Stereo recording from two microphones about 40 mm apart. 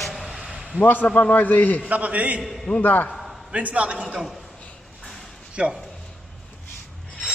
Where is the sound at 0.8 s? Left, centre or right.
Left.